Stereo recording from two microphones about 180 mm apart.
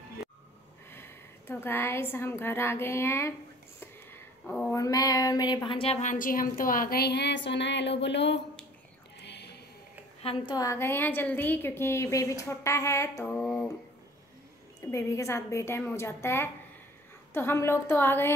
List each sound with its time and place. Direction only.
0.9 s a woman's voice: 10° left (ahead or behind)
3.8 s a sound: 10° left (ahead or behind)
4.7 s a woman's voice: 20° left (ahead or behind); by 8.4 s 75° left (ahead or behind)
9.2 s a sound: 70° left (ahead or behind)
10.2 s a woman's voice: 25° left (ahead or behind); by 13.7 s 5° left (ahead or behind)
14.9 s a woman's voice: 15° left (ahead or behind)